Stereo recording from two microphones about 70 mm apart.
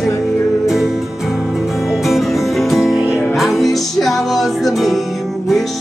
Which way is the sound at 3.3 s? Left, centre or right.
Centre.